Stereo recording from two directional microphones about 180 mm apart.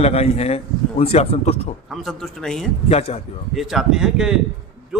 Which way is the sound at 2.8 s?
35° left (ahead or behind).